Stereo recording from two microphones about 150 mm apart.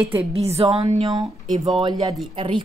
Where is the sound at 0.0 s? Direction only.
15° right (ahead or behind).